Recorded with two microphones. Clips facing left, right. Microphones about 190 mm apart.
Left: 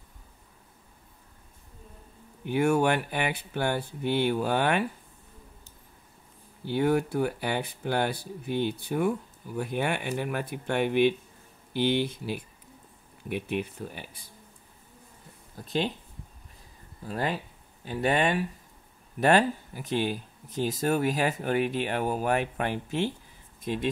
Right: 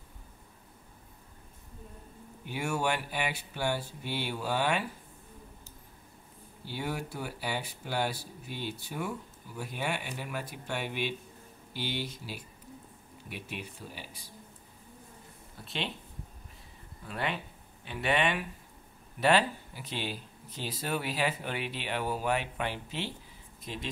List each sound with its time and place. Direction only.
2.4 s speech: 55° left (ahead or behind)
6.7 s speech: 55° left (ahead or behind)
15.5 s speech: 40° left (ahead or behind)
17.0 s speech: 40° left (ahead or behind); by 23.9 s 55° left (ahead or behind)